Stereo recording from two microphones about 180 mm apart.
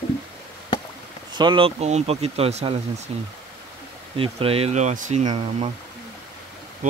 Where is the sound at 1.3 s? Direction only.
25° right (ahead or behind).